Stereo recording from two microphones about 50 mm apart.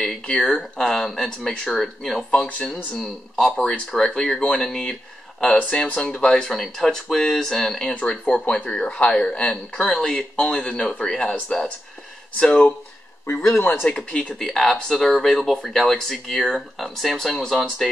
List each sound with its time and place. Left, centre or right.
0.0 s speech: centre
1.5 s speech: centre
1.8 s speech: centre
3.5 s speech: left
5.7 s speech: left
6.5 s speech: centre
8.1 s speech: centre
12.4 s speech: centre
13.3 s speech: left
13.8 s speech: centre